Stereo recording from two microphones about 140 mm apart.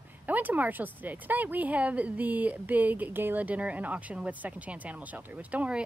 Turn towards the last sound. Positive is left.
turn(degrees=-10)  # may be behind; listen again after turning